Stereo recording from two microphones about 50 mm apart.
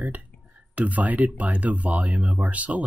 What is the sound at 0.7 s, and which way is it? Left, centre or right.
Speech, right.